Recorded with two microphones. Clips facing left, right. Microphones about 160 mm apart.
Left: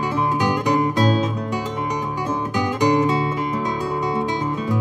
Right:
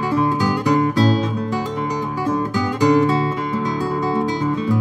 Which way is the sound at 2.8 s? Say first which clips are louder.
Right 3 dB; 20° left (ahead or behind).